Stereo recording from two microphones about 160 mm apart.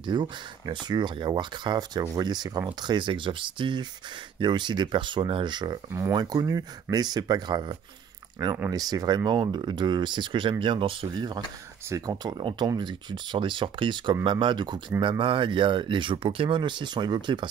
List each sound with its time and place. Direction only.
0.0 s speech: 30° right (ahead or behind)